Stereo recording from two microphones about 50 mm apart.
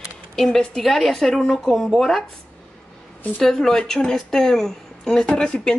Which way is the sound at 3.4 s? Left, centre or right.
Centre.